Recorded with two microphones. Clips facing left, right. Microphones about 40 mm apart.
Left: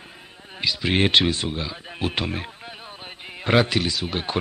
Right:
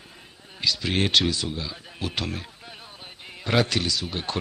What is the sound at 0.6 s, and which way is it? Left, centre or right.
Speech, left.